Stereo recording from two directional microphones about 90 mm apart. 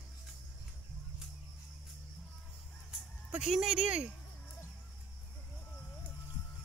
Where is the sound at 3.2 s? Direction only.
5° right (ahead or behind).